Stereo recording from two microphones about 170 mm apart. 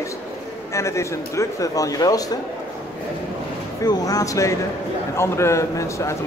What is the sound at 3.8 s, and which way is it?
A man's voice, 20° left (ahead or behind).